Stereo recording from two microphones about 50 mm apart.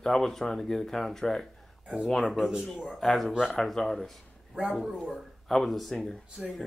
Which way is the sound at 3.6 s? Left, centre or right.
Centre.